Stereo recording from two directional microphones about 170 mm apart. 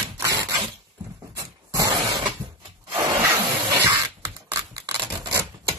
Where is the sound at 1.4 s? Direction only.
20° right (ahead or behind).